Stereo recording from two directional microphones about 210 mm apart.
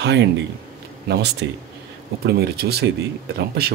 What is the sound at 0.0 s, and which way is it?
Speech, 55° right (ahead or behind).